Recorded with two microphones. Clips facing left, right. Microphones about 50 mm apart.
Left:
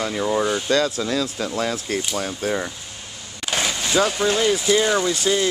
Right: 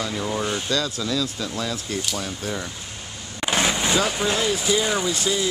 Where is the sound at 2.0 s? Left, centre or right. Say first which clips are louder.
Left 4 dB; left.